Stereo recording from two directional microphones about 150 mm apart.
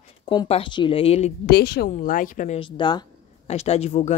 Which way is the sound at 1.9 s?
60° left (ahead or behind).